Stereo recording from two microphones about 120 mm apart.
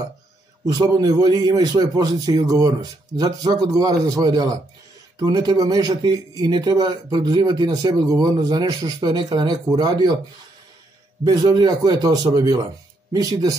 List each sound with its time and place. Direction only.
0.7 s speech: 35° right (ahead or behind)
11.2 s speech: 35° right (ahead or behind)